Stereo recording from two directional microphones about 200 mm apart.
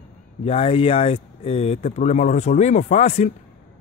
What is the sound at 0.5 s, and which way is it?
Speech, 30° left (ahead or behind).